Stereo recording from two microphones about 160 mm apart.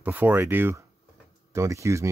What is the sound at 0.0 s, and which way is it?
Speech, 10° right (ahead or behind).